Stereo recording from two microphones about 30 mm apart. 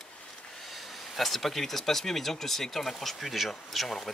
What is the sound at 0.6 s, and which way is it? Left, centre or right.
Speech, centre.